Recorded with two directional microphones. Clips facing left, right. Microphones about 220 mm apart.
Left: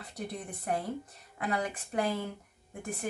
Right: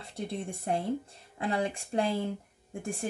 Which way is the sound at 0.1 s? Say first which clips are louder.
Right 4 dB; 25° right (ahead or behind).